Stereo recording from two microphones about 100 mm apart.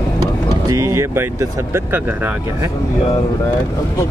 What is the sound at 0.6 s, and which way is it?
Speech, 30° right (ahead or behind).